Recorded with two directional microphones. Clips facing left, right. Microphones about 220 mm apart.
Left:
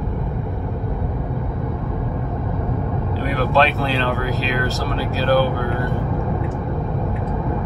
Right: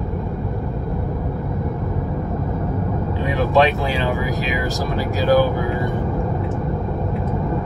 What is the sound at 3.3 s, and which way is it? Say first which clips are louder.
Speech: right 2 dB; 15° right (ahead or behind).